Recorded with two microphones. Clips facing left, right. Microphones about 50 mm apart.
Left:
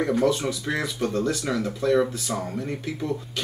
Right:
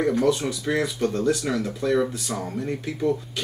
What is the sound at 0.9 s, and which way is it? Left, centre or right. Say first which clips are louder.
Speech: right 1 dB; centre.